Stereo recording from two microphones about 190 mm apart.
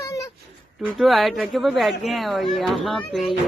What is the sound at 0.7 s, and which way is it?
A child's voice, centre (ahead or behind).